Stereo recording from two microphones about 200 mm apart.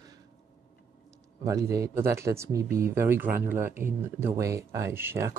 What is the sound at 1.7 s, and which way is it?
Speech, 15° right (ahead or behind).